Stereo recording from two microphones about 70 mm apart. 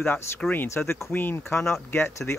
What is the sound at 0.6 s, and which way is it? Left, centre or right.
Speech, left.